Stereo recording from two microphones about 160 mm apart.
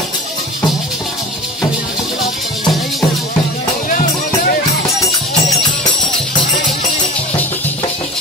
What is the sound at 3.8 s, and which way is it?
Music, 65° left (ahead or behind).